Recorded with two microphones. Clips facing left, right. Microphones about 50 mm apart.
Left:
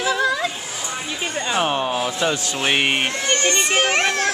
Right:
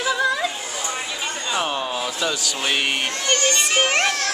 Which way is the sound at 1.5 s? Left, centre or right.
Left.